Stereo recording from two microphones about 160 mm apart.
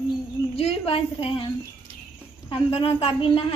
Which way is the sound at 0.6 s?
40° left (ahead or behind).